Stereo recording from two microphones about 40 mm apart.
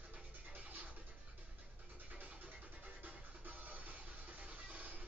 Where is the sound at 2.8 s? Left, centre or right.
Right.